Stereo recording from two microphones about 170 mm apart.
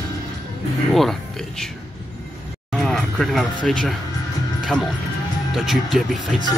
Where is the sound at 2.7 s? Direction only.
5° left (ahead or behind).